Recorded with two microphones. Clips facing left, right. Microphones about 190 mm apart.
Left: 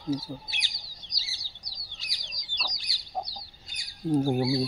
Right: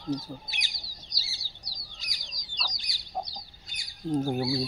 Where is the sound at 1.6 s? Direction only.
30° right (ahead or behind).